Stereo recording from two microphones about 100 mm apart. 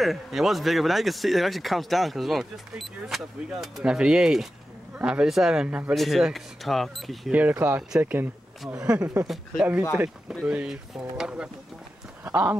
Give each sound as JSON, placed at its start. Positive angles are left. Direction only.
{"t": 0.0, "sound": "speech", "side_deg": 0}
{"t": 5.9, "sound": "speech", "side_deg": 0}
{"t": 7.2, "sound": "speech", "side_deg": -15}
{"t": 9.3, "sound": "speech", "side_deg": 0}
{"t": 10.4, "sound": "speech", "side_deg": -10}
{"t": 12.3, "sound": "speech", "side_deg": -20}